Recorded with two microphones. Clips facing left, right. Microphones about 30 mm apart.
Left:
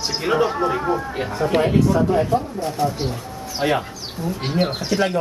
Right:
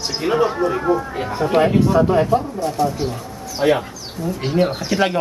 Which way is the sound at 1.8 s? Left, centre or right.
Right.